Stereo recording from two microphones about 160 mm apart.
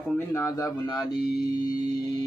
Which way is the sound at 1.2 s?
75° left (ahead or behind).